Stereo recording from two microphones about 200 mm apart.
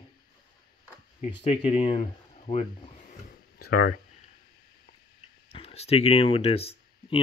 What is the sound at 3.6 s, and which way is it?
Speech, 50° left (ahead or behind).